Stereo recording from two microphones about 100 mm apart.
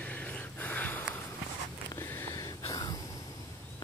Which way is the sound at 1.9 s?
35° left (ahead or behind).